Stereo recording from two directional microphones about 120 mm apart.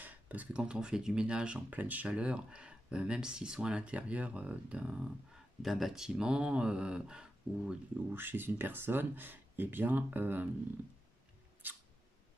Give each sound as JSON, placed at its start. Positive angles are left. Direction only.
{"t": 0.0, "sound": "speech", "side_deg": -15}
{"t": 8.1, "sound": "speech", "side_deg": -20}
{"t": 11.6, "sound": "mouse", "side_deg": -15}